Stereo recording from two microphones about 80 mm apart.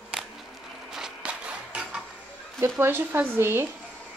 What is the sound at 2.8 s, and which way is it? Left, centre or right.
Speech, right.